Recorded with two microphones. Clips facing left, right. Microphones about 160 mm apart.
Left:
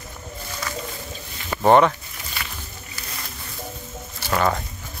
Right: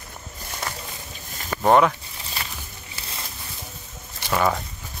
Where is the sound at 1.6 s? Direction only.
Centre (ahead or behind).